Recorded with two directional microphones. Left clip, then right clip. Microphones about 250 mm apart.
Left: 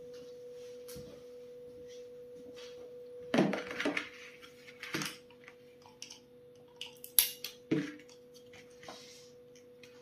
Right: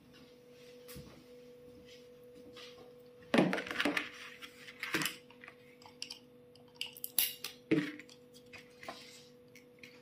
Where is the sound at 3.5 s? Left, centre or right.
Right.